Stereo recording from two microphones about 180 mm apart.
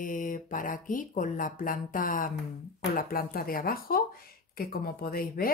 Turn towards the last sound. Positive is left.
turn(degrees=55)  # may be behind; listen again after turning